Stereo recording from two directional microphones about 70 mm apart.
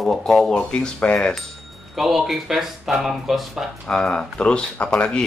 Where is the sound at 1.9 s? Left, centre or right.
Centre.